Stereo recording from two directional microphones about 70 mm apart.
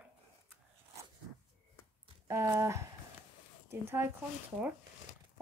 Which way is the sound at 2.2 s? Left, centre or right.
Right.